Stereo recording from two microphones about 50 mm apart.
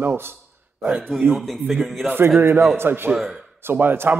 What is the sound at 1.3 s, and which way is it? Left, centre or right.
Speech, centre.